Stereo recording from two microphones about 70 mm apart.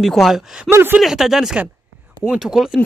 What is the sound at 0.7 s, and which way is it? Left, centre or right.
Speech, right.